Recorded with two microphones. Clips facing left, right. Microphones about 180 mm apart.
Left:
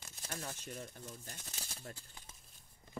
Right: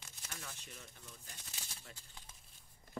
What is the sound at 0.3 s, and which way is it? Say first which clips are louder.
Speech: left 8 dB; 45° left (ahead or behind).